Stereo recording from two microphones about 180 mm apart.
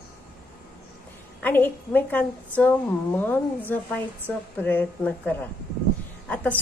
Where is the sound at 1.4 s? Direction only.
10° left (ahead or behind).